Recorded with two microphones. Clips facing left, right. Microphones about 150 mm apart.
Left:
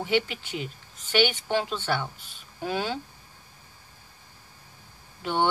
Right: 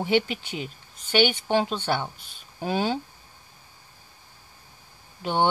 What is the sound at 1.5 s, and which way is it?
Speech, 25° right (ahead or behind).